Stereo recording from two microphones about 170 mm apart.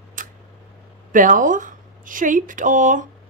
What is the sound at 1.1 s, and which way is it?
Speech, 50° right (ahead or behind).